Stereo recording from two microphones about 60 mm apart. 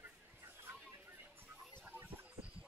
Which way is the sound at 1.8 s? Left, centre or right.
Right.